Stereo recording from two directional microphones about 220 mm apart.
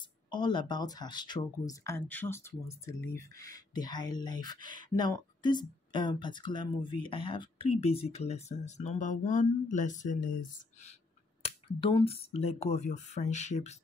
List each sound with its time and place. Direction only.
0.3 s speech: 20° left (ahead or behind)
11.4 s speech: 25° left (ahead or behind)